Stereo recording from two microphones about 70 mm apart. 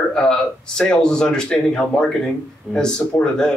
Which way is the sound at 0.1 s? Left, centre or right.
Centre.